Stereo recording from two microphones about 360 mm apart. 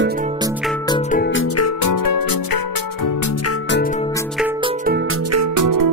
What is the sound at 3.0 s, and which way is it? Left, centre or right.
Music, left.